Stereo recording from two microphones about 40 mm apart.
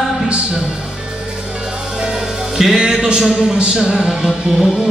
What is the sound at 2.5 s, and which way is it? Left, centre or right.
Speech, centre.